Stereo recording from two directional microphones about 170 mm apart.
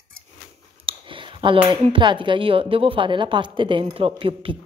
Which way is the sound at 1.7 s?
30° right (ahead or behind).